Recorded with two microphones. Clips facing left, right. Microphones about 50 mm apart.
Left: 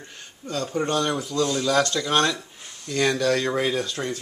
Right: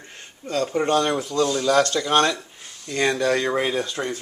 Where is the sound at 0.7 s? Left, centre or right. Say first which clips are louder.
Right 3 dB; right.